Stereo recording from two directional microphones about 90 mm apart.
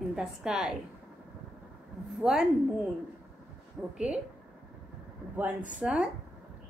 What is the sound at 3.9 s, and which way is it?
Speech, 10° right (ahead or behind).